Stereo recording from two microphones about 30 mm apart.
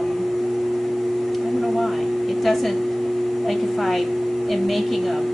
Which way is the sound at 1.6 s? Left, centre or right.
Centre.